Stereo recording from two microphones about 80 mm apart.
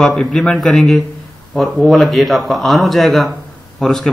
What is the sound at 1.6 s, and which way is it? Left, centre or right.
Speech, centre.